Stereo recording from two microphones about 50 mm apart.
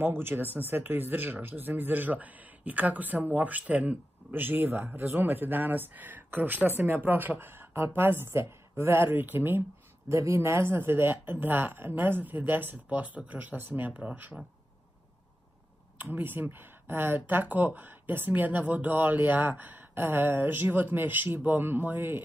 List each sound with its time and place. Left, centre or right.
0.0 s speech: right
7.7 s a woman's voice: right
8.0 s speech: right
8.3 s speech: right
10.0 s speech: right
10.4 s speech: right
12.7 s speech: right
16.0 s speech: right